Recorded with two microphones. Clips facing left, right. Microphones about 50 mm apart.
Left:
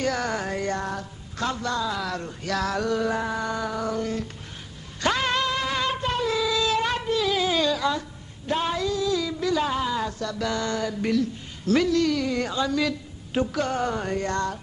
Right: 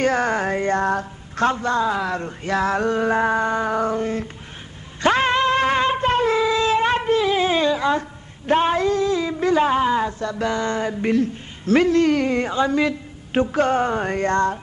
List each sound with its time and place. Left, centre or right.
0.0 s a sound: right
5.0 s shofar: right
8.5 s a woman's voice: right